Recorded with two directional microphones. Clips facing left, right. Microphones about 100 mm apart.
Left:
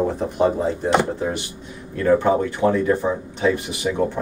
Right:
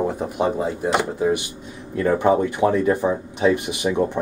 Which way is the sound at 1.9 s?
15° right (ahead or behind).